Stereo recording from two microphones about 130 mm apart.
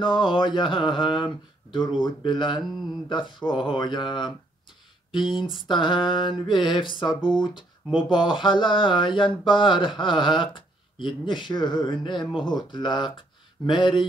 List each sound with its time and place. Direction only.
0.0 s speech: 40° left (ahead or behind)
5.7 s speech: 35° left (ahead or behind)